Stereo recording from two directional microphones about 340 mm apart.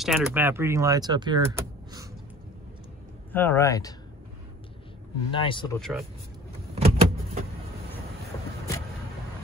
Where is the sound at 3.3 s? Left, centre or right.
Centre.